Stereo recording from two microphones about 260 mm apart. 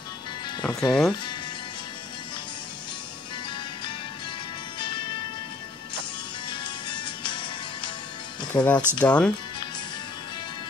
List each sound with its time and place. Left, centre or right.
0.7 s speech: centre
4.7 s music: centre
6.5 s music: centre
8.5 s speech: centre